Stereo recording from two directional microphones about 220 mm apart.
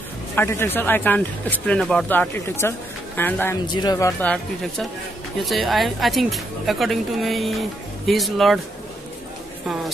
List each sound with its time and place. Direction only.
0.4 s speech: 10° left (ahead or behind)
3.6 s speech: 20° left (ahead or behind); by 8.5 s centre (ahead or behind)